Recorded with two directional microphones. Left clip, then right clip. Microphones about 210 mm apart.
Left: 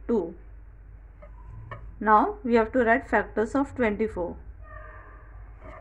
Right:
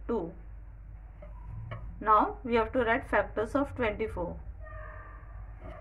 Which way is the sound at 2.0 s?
25° left (ahead or behind).